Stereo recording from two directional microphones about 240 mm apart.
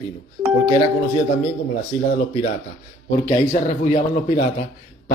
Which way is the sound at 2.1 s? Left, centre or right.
Left.